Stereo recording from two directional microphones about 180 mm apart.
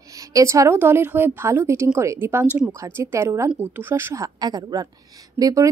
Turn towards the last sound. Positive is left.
turn(degrees=-20)  # may be behind; listen again after turning